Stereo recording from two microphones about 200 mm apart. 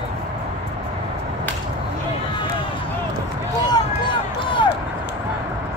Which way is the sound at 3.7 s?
25° left (ahead or behind).